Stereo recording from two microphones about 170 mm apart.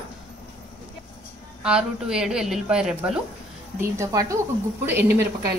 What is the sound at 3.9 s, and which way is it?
Speech, 20° right (ahead or behind).